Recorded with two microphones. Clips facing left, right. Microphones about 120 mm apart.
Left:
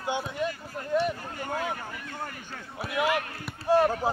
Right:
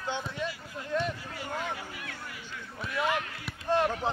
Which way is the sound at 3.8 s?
40° left (ahead or behind).